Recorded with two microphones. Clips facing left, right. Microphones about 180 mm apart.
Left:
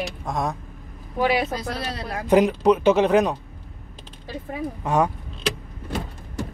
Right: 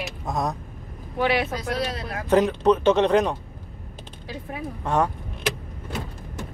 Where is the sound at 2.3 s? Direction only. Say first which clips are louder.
Left 2 dB; 10° left (ahead or behind).